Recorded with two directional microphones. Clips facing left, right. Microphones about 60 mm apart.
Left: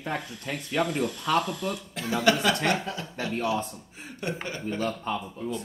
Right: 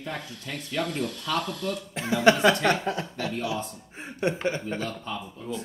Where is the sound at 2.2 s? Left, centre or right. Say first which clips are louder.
Right 4 dB; right.